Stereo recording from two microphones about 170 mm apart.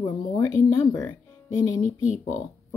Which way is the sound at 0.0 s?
20° left (ahead or behind).